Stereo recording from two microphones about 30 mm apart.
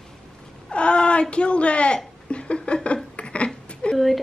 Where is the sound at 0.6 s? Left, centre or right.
Left.